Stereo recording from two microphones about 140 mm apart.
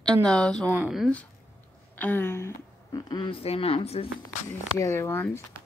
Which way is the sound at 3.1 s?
35° left (ahead or behind).